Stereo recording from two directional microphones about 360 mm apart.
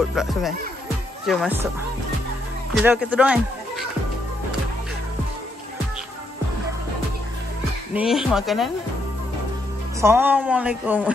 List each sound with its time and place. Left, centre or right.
0.1 s speech: centre
2.7 s speech: centre
7.9 s speech: centre
9.9 s speech: centre